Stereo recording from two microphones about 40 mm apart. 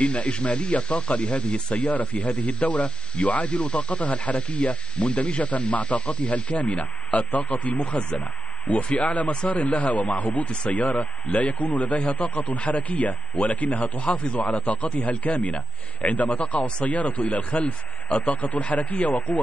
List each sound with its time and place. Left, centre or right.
0.0 s speech: left
1.9 s a man's voice: left